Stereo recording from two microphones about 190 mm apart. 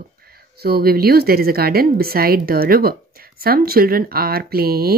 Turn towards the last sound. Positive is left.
turn(degrees=-55)  # may be behind; listen again after turning